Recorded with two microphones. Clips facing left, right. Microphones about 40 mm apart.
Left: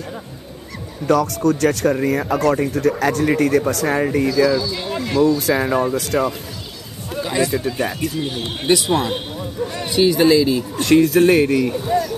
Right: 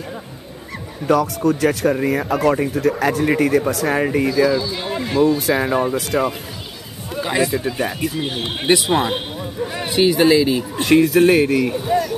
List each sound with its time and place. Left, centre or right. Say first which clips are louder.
1.0 s speech: even; centre
5.5 s speech: even; centre
7.2 s a sound: right 1 dB; centre
7.5 s speech: even; centre
8.2 s speech: right 1 dB; right
10.4 s speech: even; right
10.9 s speech: even; centre